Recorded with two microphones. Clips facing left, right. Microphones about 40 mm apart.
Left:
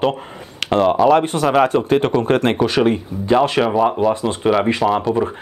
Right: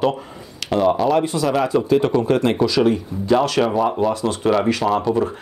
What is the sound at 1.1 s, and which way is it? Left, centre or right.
Speech, left.